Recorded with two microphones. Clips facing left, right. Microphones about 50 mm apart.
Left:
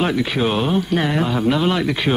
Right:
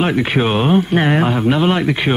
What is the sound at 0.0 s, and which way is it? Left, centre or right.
Speech, right.